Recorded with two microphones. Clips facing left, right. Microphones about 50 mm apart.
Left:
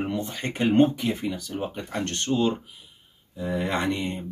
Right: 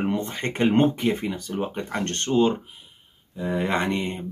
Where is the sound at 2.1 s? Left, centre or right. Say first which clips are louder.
Right 3 dB; right.